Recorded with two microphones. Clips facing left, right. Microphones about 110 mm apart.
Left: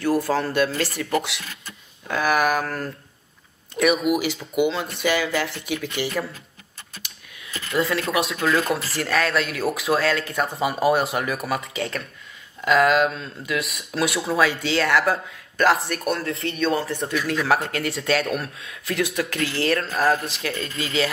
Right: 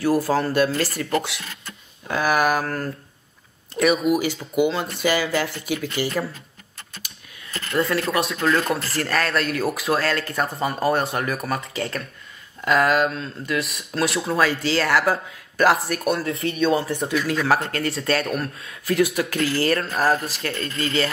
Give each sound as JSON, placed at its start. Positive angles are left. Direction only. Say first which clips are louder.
{"t": 0.0, "sound": "speech", "louder": "right 1 dB", "side_deg": -5}